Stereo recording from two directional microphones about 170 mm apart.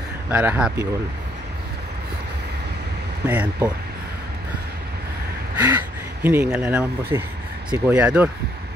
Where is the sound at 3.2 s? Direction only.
10° right (ahead or behind).